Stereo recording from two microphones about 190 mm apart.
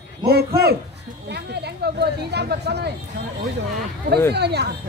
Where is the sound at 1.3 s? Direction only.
60° right (ahead or behind).